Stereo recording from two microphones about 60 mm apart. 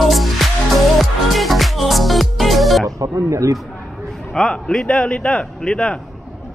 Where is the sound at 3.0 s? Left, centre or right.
Right.